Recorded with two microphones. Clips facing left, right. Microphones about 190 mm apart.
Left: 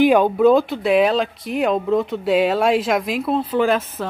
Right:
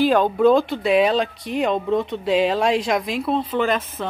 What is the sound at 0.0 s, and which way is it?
Speech, 10° left (ahead or behind).